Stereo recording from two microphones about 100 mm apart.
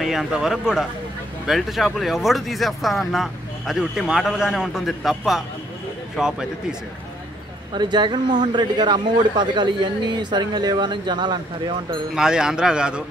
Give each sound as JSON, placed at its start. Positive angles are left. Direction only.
{"t": 0.0, "sound": "speech", "side_deg": 0}
{"t": 7.7, "sound": "a man's voice", "side_deg": -45}
{"t": 12.2, "sound": "a man's voice", "side_deg": -5}